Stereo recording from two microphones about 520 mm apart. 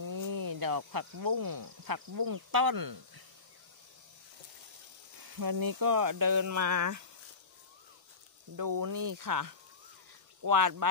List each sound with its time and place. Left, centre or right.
0.0 s speech: right
5.2 s speech: right
8.5 s speech: right